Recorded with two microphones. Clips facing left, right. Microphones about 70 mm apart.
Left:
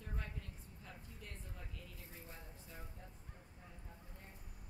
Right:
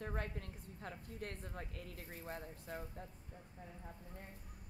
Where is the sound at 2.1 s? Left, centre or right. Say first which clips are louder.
Right 8 dB; right.